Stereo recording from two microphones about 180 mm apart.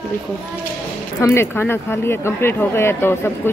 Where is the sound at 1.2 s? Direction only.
15° left (ahead or behind).